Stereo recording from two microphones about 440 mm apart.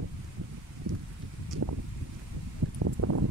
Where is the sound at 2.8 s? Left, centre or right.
Right.